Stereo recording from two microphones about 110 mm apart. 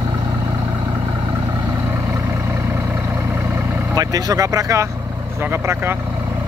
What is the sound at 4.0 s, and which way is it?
Speech, 35° right (ahead or behind).